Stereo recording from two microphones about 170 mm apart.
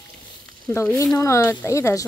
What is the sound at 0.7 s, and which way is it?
Speech, 15° left (ahead or behind).